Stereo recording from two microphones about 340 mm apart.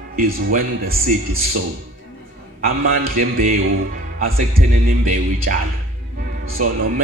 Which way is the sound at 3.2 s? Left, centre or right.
Right.